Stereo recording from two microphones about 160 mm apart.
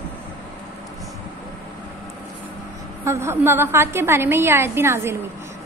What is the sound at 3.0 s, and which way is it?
A woman's voice, 15° right (ahead or behind).